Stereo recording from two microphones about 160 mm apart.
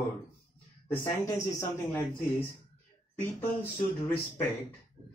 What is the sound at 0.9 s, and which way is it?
Speech, 15° left (ahead or behind).